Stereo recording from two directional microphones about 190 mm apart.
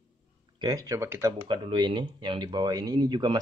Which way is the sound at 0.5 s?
20° right (ahead or behind).